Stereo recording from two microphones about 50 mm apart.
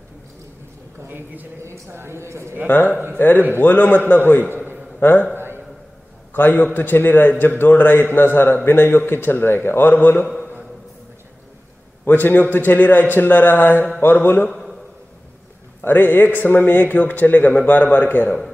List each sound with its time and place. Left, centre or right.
1.0 s a man's voice: right
1.6 s a man's voice: right
2.6 s a man's voice: left
5.3 s a sound: right
6.3 s a man's voice: left
12.0 s a man's voice: left
14.5 s a sound: centre
15.8 s a man's voice: left